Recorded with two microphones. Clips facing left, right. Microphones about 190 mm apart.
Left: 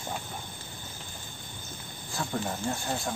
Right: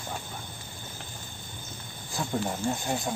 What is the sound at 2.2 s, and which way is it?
Speech, 15° right (ahead or behind).